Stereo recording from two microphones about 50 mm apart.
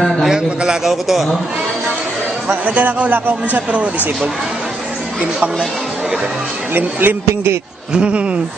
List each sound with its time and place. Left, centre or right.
0.2 s a man's voice: centre
0.8 s a man's voice: centre
2.4 s a man's voice: right
6.7 s a man's voice: right
7.9 s speech: right